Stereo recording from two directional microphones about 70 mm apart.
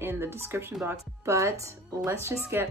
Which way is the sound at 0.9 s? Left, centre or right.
Right.